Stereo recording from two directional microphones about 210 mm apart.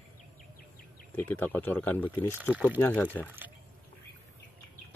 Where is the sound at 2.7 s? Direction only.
10° left (ahead or behind).